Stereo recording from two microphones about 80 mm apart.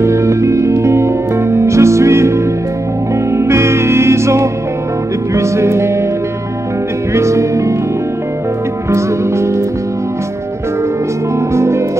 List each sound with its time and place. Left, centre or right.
0.0 s music: right
7.2 s music: right
11.5 s music: right